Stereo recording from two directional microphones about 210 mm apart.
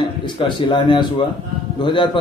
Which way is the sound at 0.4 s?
20° left (ahead or behind).